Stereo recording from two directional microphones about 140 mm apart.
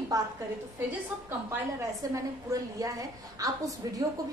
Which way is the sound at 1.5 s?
20° right (ahead or behind).